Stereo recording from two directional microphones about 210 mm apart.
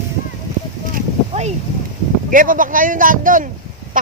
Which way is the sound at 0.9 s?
30° right (ahead or behind).